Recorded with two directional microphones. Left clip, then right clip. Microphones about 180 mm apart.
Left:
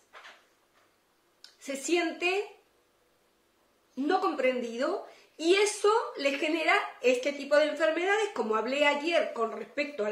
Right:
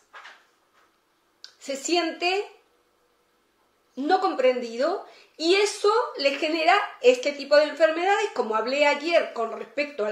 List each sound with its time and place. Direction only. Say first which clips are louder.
1.4 s a woman's voice: right 5 dB; 15° left (ahead or behind)
3.9 s a woman's voice: right 5 dB; 15° left (ahead or behind)